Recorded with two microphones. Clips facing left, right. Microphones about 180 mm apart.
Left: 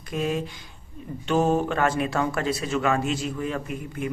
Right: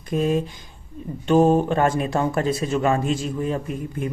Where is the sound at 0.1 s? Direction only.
35° right (ahead or behind).